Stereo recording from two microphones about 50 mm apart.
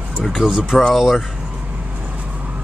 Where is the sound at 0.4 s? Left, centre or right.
Centre.